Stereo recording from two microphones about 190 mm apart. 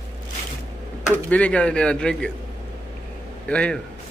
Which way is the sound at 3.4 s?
5° left (ahead or behind).